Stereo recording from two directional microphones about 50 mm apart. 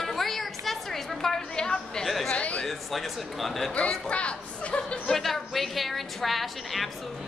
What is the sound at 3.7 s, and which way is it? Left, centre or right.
Speech, left.